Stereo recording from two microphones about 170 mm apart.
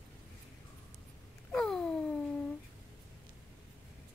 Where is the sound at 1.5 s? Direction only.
5° left (ahead or behind).